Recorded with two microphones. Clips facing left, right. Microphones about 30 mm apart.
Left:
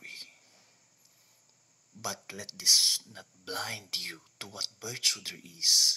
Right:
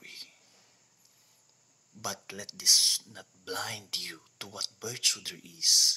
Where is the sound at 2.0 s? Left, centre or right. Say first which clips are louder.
Even; centre.